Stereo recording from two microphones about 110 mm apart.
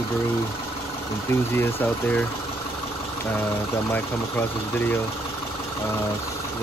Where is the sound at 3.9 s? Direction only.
15° left (ahead or behind).